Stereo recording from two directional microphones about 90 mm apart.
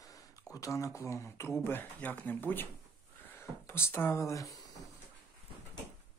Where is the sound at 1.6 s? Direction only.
20° left (ahead or behind); by 4.6 s 40° left (ahead or behind).